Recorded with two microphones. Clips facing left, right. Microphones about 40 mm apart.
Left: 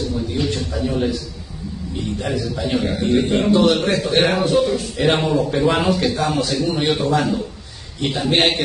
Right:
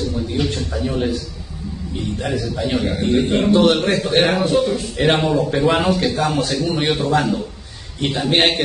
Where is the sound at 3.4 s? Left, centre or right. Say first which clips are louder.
Right 2 dB; right.